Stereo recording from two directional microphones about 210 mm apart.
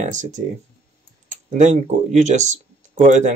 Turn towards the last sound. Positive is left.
turn(degrees=-35)  # may be behind; listen again after turning